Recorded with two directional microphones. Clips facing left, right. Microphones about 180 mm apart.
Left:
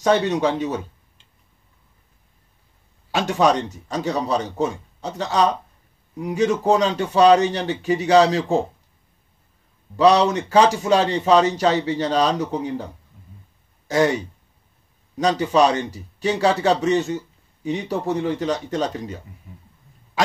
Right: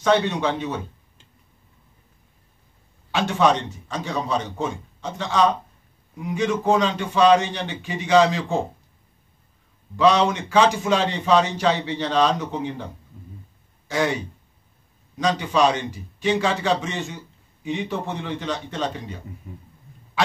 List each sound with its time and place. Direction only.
0.0 s a man's voice: 40° left (ahead or behind)
3.1 s a man's voice: 40° left (ahead or behind)
9.9 s a man's voice: 40° left (ahead or behind)
13.8 s speech: 40° left (ahead or behind)
15.1 s a man's voice: 40° left (ahead or behind)